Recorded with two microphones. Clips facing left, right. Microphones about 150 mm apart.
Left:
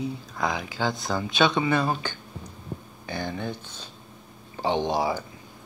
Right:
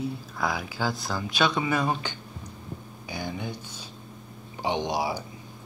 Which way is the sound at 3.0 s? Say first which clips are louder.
Left 3 dB; 10° right (ahead or behind).